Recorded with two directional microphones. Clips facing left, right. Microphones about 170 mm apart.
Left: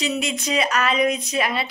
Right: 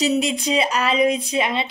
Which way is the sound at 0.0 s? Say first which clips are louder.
Right 5 dB; 35° right (ahead or behind).